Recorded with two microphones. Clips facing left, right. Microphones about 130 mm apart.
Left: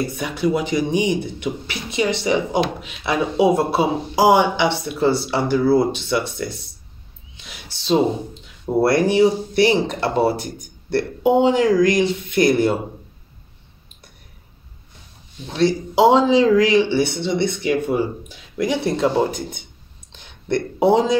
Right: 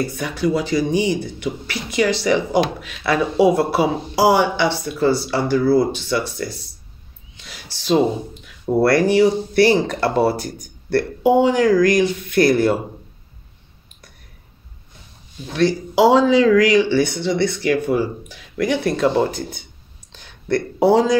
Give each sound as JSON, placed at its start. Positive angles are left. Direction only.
{"t": 0.0, "sound": "speech", "side_deg": 20}
{"t": 15.4, "sound": "speech", "side_deg": 25}
{"t": 20.1, "sound": "a sound", "side_deg": 20}